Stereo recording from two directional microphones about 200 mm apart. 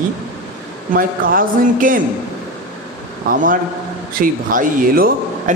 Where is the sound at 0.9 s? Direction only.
45° right (ahead or behind).